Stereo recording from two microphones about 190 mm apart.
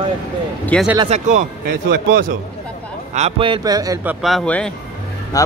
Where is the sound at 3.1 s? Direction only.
30° right (ahead or behind).